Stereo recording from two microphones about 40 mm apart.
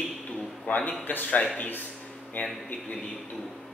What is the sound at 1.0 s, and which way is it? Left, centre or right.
Speech, left.